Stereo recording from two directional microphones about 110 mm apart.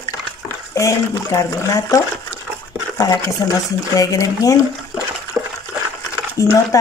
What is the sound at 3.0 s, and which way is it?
Speech, 35° left (ahead or behind).